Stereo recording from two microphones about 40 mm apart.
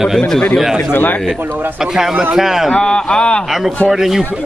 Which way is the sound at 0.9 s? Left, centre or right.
Left.